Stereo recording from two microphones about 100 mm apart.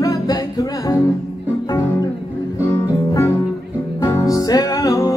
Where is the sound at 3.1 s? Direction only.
30° left (ahead or behind).